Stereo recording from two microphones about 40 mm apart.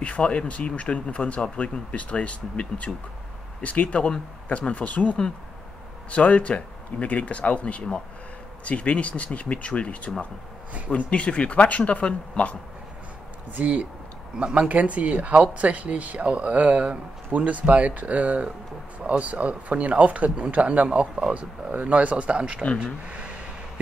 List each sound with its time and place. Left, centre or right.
0.0 s speech: left
3.6 s speech: left
14.3 s speech: right